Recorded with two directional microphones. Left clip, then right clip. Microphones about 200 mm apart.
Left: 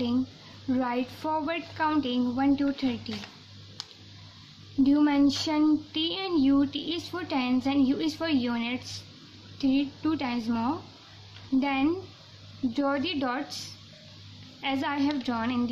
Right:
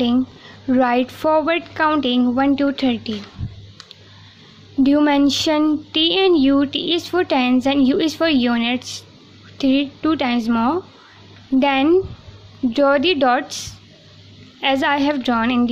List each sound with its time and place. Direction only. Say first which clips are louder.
0.7 s speech: right 12 dB; 40° right (ahead or behind)
4.8 s speech: right 8 dB; 40° right (ahead or behind)